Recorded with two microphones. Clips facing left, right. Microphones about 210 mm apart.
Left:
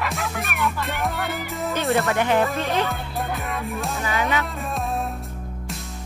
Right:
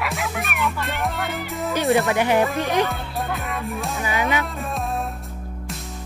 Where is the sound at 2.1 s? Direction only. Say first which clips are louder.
Right 1 dB; 15° right (ahead or behind).